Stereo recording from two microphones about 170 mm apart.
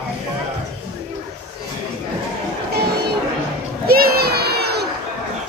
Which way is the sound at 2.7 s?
70° right (ahead or behind).